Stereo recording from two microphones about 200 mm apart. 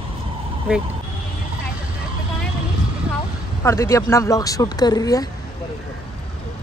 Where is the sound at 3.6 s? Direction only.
15° left (ahead or behind).